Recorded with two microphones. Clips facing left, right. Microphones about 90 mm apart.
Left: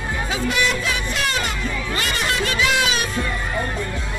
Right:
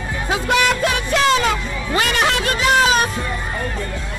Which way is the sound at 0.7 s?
60° right (ahead or behind).